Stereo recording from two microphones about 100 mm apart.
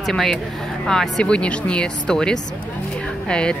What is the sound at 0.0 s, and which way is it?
Speech, 5° left (ahead or behind).